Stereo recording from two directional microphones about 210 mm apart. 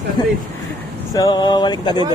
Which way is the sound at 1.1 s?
20° left (ahead or behind).